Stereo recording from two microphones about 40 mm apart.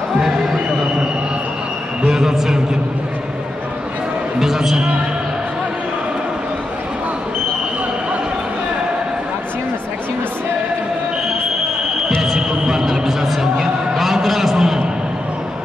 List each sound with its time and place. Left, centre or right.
2.0 s a man's voice: centre
4.4 s music: centre
12.4 s a sound: centre